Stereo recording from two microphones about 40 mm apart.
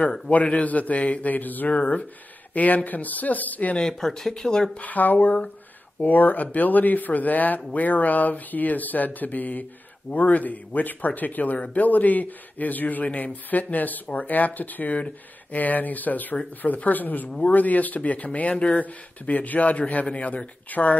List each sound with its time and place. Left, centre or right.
0.3 s speech: left
1.7 s speech: left
3.8 s speech: centre
4.7 s speech: left